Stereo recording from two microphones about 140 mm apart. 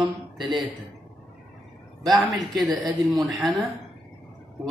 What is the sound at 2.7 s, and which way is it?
Speech, 25° right (ahead or behind).